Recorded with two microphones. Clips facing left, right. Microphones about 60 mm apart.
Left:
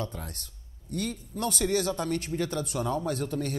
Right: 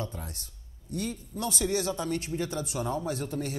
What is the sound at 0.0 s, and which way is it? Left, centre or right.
A man's voice, left.